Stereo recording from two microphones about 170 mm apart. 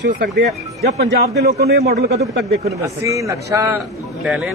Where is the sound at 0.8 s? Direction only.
70° right (ahead or behind).